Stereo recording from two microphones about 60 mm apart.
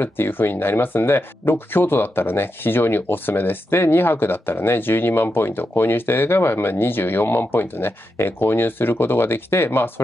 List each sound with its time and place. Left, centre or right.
0.0 s speech: left